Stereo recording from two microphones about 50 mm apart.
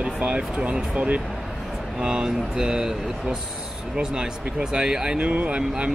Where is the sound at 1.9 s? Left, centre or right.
Centre.